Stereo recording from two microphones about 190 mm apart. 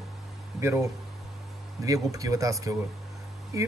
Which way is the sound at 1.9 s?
20° right (ahead or behind).